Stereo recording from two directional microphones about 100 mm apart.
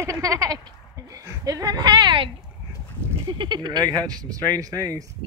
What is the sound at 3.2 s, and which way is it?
Speech, 50° right (ahead or behind).